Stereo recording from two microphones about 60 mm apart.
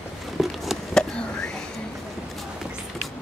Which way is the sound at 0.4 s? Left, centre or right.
Centre.